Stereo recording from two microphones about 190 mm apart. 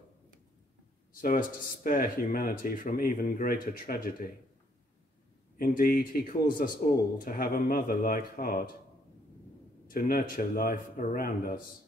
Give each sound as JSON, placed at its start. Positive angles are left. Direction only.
{"t": 1.2, "sound": "speech", "side_deg": 45}
{"t": 5.6, "sound": "speech", "side_deg": 50}
{"t": 9.8, "sound": "speech", "side_deg": 50}